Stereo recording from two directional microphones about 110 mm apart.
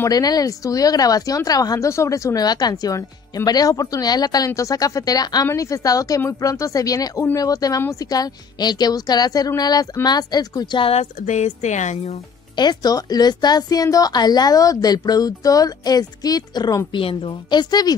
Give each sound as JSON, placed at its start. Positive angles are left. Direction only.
{"t": 0.1, "sound": "a woman's voice", "side_deg": 35}
{"t": 10.8, "sound": "speech", "side_deg": 75}
{"t": 12.5, "sound": "a woman's voice", "side_deg": 40}
{"t": 17.0, "sound": "a woman's voice", "side_deg": 55}